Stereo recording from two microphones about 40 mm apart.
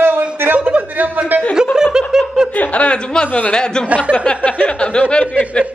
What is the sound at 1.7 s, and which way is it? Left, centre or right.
Snicker, centre.